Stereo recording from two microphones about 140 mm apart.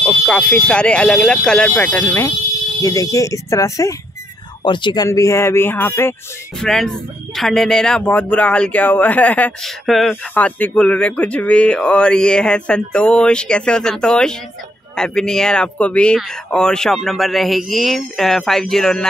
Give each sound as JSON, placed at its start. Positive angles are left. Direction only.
{"t": 0.0, "sound": "speech", "side_deg": 10}
{"t": 2.8, "sound": "speech", "side_deg": 25}
{"t": 4.6, "sound": "speech", "side_deg": 35}
{"t": 6.6, "sound": "speech", "side_deg": 5}